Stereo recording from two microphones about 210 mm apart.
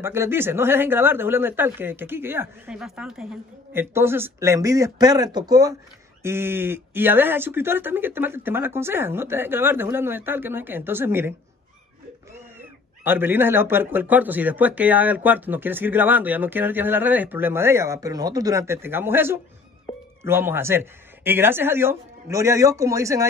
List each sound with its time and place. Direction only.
0.0 s speech: 10° right (ahead or behind)
13.0 s speech: 10° right (ahead or behind)